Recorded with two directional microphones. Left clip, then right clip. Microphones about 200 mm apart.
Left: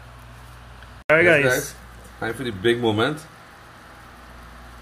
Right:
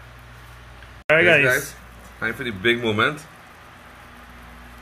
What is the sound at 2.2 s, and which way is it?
Speech, 65° left (ahead or behind).